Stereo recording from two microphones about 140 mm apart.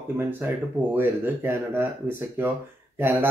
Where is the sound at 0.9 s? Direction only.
15° right (ahead or behind).